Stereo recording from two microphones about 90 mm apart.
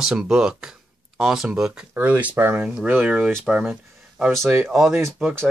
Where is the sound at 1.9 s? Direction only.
20° right (ahead or behind).